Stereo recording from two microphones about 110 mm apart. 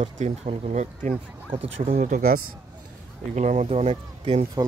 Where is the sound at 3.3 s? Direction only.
90° right; by 4.4 s 65° right (ahead or behind).